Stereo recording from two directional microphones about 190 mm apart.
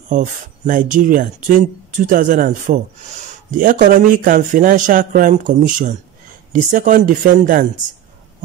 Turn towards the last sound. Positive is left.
turn(degrees=-45)  # may be behind; listen again after turning